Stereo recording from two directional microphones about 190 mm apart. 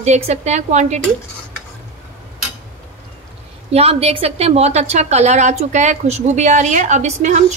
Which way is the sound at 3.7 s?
30° right (ahead or behind).